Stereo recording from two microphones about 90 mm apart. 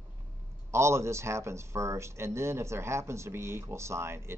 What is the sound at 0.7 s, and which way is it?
Speech, 30° right (ahead or behind).